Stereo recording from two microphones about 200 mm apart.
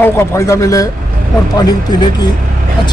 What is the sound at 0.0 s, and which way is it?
Speech, 15° left (ahead or behind).